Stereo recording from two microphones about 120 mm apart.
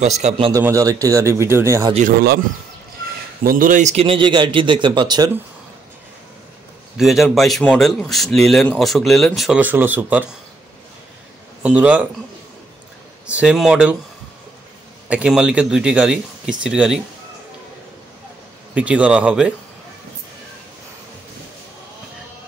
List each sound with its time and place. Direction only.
0.0 s a man's voice: 70° right (ahead or behind)
0.5 s speech: 30° right (ahead or behind)
3.6 s speech: 80° right
4.0 s speech: 45° right (ahead or behind)
7.0 s a man's voice: centre (ahead or behind)
9.6 s speech: 15° right (ahead or behind)
11.6 s speech: 10° right (ahead or behind)
13.3 s speech: 10° right (ahead or behind)
15.0 s speech: 10° right (ahead or behind)
18.8 s speech: 10° right (ahead or behind)